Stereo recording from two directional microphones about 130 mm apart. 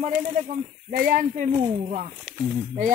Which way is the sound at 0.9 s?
90° right.